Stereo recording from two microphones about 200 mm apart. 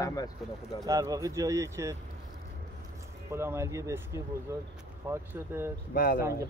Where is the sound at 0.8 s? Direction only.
15° right (ahead or behind).